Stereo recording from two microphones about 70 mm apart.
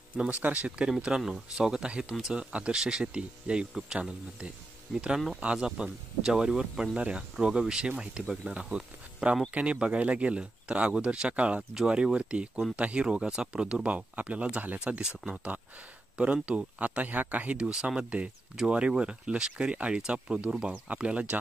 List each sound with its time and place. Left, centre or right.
0.2 s speech: right